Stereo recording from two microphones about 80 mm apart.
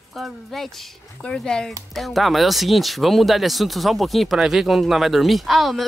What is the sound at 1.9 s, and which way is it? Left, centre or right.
Speech, centre.